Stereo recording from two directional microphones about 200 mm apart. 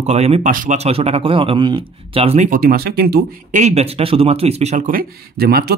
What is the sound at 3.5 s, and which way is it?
A man's voice, 35° right (ahead or behind).